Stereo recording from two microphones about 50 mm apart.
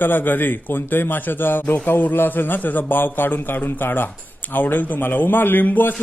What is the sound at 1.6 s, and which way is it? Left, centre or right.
Speech, left.